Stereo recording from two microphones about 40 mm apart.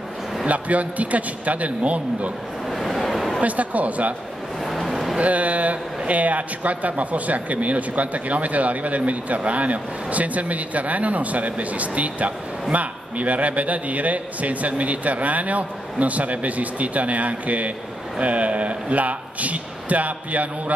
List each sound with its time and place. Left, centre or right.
0.5 s a man's voice: right
2.7 s vehicle: centre
3.3 s a man's voice: right
4.6 s a sound: centre
5.2 s a man's voice: right